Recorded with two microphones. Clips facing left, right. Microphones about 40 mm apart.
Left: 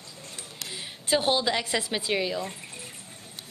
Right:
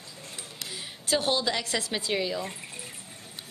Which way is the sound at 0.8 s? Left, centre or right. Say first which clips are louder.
Left 2 dB; left.